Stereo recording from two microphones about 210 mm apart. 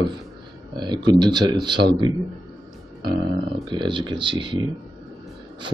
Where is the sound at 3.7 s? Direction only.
20° right (ahead or behind).